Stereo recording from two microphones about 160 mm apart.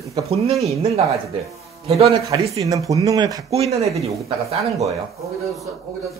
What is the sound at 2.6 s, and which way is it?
Speech, 20° right (ahead or behind).